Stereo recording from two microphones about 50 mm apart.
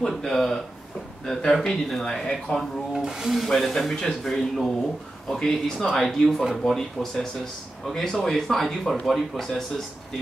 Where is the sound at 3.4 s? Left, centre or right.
Centre.